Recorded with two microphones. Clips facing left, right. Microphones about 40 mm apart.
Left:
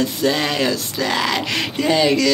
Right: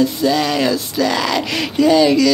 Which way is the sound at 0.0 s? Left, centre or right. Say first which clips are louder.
Right 3 dB; left.